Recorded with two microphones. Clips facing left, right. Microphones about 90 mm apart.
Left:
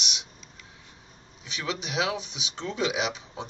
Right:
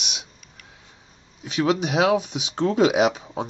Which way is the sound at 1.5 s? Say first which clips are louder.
Right 9 dB; 40° right (ahead or behind).